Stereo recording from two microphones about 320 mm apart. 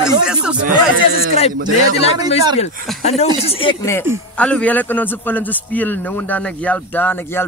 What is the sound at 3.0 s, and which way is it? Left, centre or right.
A man's voice, centre.